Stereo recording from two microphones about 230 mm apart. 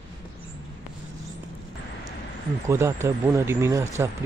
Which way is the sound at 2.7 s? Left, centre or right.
Centre.